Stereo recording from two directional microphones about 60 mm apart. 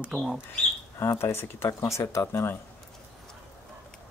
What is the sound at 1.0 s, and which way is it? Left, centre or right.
Speech, left.